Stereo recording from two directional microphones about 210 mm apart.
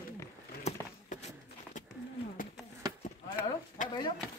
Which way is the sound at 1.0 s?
35° left (ahead or behind).